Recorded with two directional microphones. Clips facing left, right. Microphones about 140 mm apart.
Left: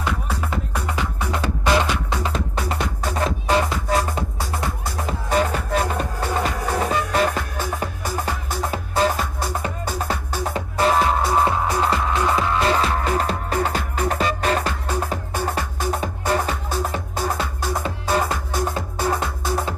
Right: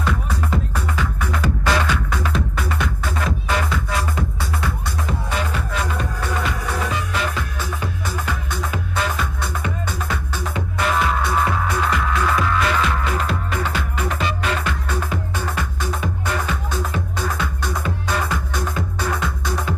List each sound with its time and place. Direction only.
0.7 s music: 15° left (ahead or behind); by 17.3 s 40° left (ahead or behind)
17.3 s music: 30° left (ahead or behind)
19.1 s music: 40° left (ahead or behind)